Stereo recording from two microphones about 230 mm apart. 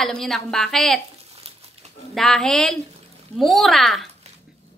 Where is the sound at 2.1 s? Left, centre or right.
Centre.